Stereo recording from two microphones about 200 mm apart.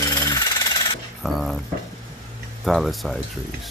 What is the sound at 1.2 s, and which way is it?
Speech, centre (ahead or behind).